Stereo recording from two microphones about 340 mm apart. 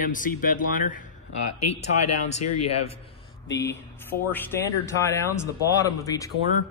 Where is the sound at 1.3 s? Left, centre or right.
Left.